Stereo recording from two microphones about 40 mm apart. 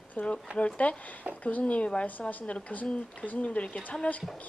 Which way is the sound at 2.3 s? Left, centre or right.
Left.